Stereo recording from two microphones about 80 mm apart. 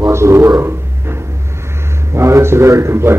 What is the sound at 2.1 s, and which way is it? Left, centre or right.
A man's voice, right.